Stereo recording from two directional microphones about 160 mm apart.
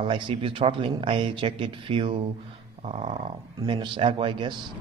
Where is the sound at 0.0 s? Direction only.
30° right (ahead or behind).